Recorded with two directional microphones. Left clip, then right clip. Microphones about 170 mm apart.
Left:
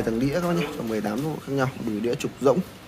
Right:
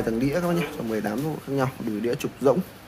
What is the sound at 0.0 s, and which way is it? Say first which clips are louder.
Speech: even; centre (ahead or behind).